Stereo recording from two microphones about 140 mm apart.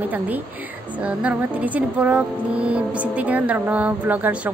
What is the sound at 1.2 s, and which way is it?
Speech, 10° right (ahead or behind).